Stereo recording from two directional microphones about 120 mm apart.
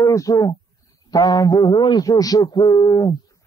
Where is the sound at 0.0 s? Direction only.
30° left (ahead or behind).